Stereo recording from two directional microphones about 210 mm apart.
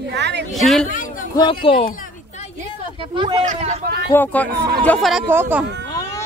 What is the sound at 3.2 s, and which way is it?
Speech, 25° right (ahead or behind).